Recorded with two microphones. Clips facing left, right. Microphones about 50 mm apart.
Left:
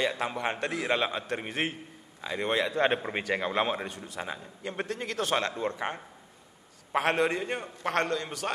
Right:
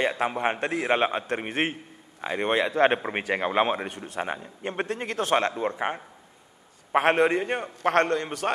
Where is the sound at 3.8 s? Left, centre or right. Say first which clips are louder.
Right 5 dB; right.